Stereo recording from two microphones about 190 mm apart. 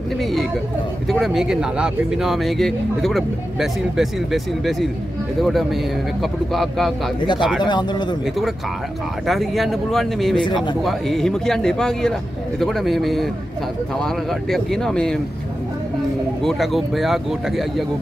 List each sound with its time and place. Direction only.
0.2 s chatter: centre (ahead or behind)
1.0 s speech: centre (ahead or behind)
7.6 s a man's voice: 25° left (ahead or behind)
9.3 s speech: centre (ahead or behind)
16.4 s speech: centre (ahead or behind)